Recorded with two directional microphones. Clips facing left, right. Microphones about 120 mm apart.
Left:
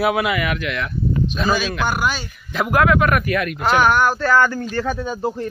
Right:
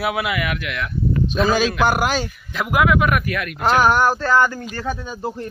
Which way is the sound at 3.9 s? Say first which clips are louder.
Even; 30° right (ahead or behind).